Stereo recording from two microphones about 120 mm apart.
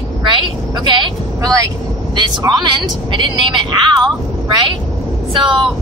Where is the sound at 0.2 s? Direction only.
40° right (ahead or behind).